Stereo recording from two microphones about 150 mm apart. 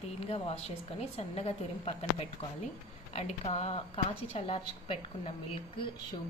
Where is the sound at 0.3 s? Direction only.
40° left (ahead or behind).